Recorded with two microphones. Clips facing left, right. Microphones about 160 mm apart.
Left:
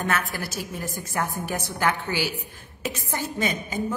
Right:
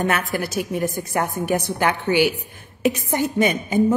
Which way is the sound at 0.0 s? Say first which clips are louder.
Right 5 dB; 20° right (ahead or behind).